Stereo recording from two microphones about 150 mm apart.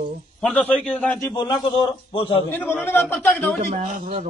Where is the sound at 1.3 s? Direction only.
30° left (ahead or behind).